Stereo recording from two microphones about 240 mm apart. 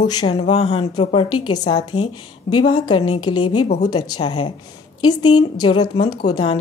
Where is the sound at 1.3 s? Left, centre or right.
Left.